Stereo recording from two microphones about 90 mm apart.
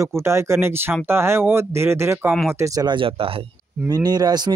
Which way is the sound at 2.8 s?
80° right.